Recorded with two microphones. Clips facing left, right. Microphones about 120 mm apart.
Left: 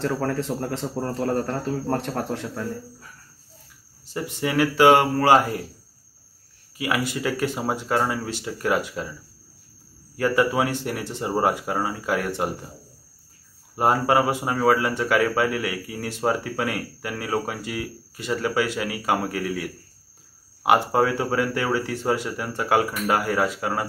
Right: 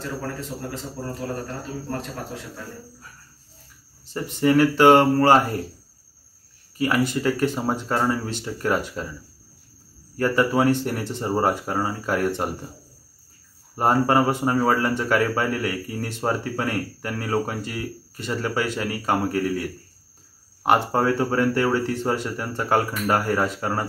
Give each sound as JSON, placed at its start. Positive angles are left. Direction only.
{"t": 0.0, "sound": "speech", "side_deg": 75}
{"t": 4.4, "sound": "speech", "side_deg": 10}
{"t": 6.8, "sound": "speech", "side_deg": 5}
{"t": 10.1, "sound": "speech", "side_deg": 5}
{"t": 13.7, "sound": "speech", "side_deg": 5}